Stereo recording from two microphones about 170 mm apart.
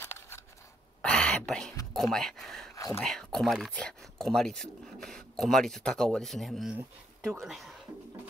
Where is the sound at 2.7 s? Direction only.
20° left (ahead or behind).